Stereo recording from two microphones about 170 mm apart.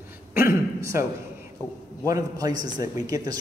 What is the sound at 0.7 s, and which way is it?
Speech, 15° right (ahead or behind).